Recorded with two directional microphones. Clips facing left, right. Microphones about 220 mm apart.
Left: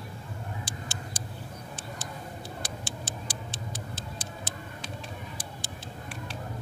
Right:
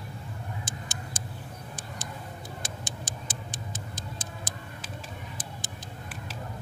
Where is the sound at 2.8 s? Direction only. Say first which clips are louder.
Left 1 dB; 20° right (ahead or behind).